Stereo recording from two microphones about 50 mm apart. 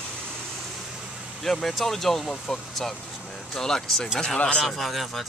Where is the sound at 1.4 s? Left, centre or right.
Centre.